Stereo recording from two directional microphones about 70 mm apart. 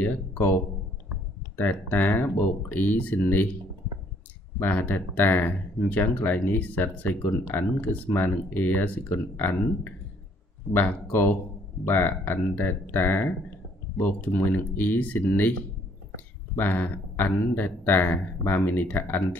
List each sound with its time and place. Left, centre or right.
0.0 s speech: left
1.6 s speech: left
4.6 s speech: left
10.7 s speech: left
16.5 s speech: left